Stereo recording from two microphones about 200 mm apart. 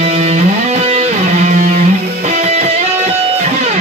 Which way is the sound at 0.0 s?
35° right (ahead or behind).